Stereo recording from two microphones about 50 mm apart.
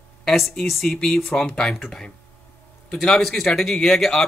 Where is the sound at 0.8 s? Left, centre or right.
Centre.